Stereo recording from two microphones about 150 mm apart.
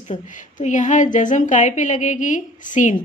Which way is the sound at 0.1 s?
55° left (ahead or behind).